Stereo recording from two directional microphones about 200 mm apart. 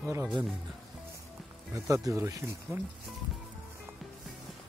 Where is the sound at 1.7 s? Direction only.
15° right (ahead or behind).